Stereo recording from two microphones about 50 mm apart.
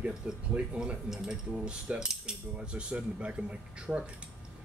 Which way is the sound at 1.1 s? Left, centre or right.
Centre.